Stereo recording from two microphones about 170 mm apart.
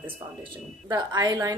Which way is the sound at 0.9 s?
25° right (ahead or behind).